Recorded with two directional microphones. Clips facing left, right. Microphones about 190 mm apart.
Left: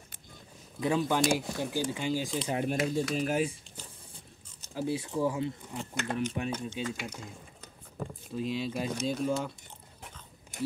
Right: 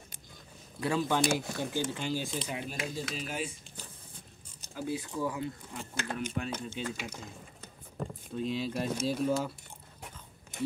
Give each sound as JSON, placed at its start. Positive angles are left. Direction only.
{"t": 0.7, "sound": "speech", "side_deg": 15}
{"t": 2.5, "sound": "speech", "side_deg": 50}
{"t": 4.7, "sound": "speech", "side_deg": 25}
{"t": 6.6, "sound": "speech", "side_deg": 0}